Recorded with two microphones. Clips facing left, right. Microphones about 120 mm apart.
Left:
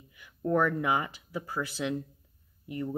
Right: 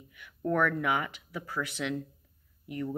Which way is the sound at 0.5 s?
25° left (ahead or behind).